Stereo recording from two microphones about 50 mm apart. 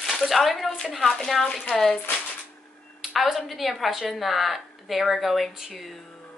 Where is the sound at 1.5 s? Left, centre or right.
Centre.